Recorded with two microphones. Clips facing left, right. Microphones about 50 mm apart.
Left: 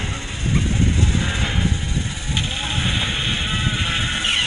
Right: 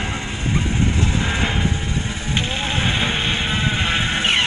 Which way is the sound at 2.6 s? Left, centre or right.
Right.